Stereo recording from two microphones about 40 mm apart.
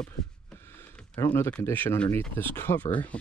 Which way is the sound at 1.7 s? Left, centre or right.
Left.